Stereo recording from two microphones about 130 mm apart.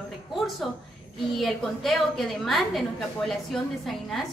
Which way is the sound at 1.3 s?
Centre (ahead or behind).